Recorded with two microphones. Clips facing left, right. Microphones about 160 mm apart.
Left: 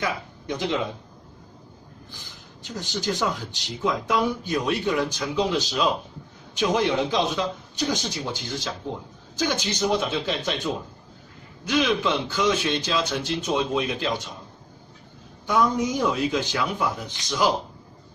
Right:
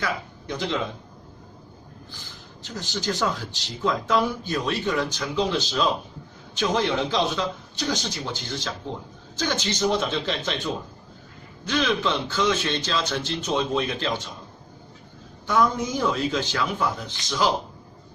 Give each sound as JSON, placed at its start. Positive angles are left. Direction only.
{"t": 0.0, "sound": "speech", "side_deg": 15}
{"t": 2.6, "sound": "speech", "side_deg": 15}
{"t": 11.6, "sound": "speech", "side_deg": 10}
{"t": 15.4, "sound": "speech", "side_deg": 15}